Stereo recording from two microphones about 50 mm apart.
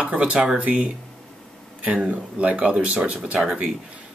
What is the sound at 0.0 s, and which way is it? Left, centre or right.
Speech, right.